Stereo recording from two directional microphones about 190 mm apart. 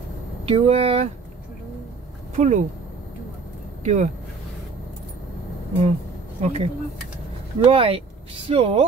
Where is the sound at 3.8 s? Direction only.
40° right (ahead or behind).